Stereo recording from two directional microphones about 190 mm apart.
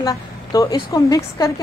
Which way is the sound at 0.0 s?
20° left (ahead or behind).